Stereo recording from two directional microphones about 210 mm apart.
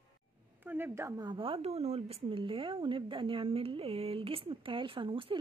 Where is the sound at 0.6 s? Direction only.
10° right (ahead or behind).